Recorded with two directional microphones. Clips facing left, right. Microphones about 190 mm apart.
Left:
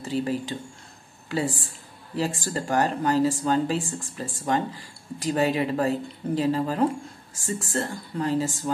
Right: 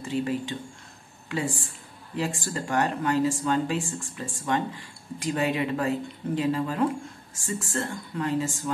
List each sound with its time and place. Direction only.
0.0 s speech: 35° left (ahead or behind)